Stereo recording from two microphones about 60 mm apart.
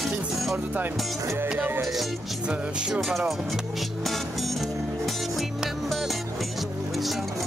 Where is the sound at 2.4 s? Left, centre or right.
Centre.